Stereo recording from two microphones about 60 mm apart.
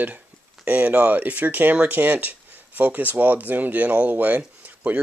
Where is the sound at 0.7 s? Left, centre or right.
Right.